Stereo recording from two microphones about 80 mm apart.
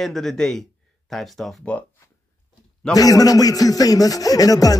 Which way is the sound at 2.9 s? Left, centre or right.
Left.